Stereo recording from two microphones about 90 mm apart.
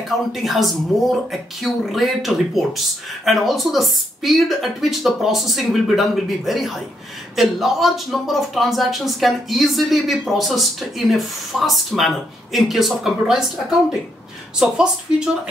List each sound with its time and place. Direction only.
0.3 s speech: centre (ahead or behind)
14.6 s speech: 5° right (ahead or behind)